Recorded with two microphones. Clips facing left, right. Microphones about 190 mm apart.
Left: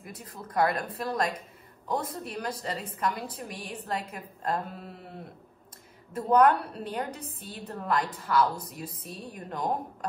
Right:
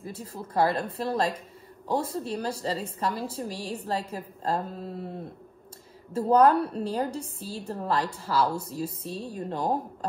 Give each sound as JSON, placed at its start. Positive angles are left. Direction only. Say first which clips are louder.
{"t": 0.0, "sound": "a woman's voice", "louder": "right 5 dB", "side_deg": -30}
{"t": 6.1, "sound": "a woman's voice", "louder": "right 2 dB", "side_deg": -30}